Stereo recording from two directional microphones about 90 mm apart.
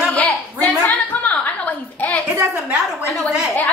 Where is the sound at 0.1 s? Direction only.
15° left (ahead or behind).